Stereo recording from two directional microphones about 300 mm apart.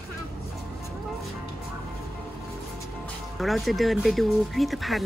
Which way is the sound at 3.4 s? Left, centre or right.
Centre.